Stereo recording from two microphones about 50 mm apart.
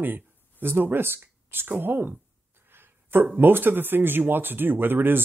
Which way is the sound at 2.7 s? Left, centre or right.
Right.